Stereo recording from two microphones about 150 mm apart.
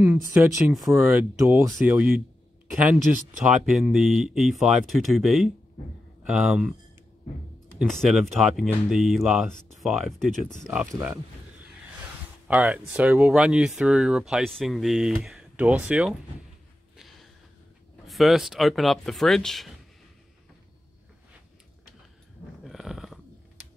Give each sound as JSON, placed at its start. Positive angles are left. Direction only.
{"t": 0.0, "sound": "speech", "side_deg": -10}
{"t": 7.8, "sound": "speech", "side_deg": 0}
{"t": 12.4, "sound": "speech", "side_deg": -5}
{"t": 16.9, "sound": "a sound", "side_deg": 0}
{"t": 18.0, "sound": "speech", "side_deg": 0}
{"t": 22.7, "sound": "a sound", "side_deg": 0}